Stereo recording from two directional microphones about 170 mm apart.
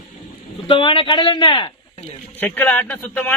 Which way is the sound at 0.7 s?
30° left (ahead or behind).